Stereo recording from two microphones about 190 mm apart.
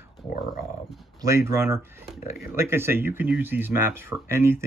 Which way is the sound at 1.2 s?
15° right (ahead or behind).